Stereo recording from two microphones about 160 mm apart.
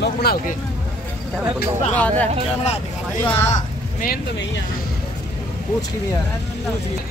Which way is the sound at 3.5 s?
55° left (ahead or behind).